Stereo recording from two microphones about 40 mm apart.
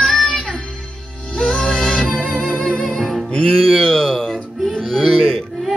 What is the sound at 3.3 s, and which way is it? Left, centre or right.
Speech, centre.